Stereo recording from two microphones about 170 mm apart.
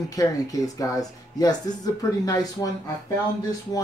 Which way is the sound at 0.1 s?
20° left (ahead or behind).